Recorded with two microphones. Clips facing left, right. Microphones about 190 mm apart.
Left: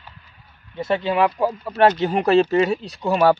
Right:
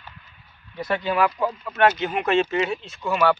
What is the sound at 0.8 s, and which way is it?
Speech, 25° left (ahead or behind).